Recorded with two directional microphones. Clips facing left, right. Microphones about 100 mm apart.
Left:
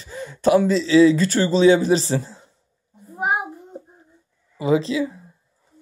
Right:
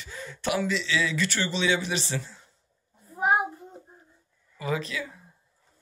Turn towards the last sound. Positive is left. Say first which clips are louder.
# left 11 dB
turn(degrees=25)  # may be behind; listen again after turning